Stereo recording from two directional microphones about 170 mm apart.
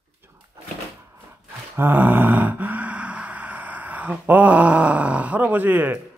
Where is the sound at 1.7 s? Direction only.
10° right (ahead or behind).